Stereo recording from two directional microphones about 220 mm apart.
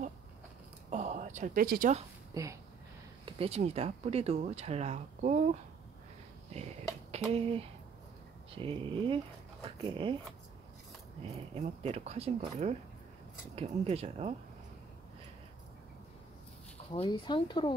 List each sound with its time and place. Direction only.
0.8 s a sound: 30° right (ahead or behind)
2.3 s speech: 15° right (ahead or behind); by 5.6 s 35° right (ahead or behind)
7.1 s speech: 25° right (ahead or behind)
11.3 s speech: 30° right (ahead or behind)
16.9 s speech: 25° left (ahead or behind)